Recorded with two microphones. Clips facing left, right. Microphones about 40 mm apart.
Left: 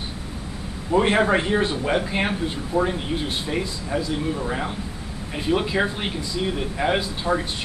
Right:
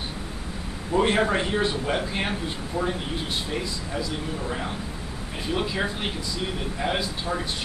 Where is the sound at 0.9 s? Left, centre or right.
Centre.